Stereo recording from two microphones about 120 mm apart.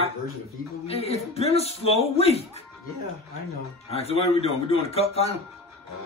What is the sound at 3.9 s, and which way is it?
Speech, 60° left (ahead or behind).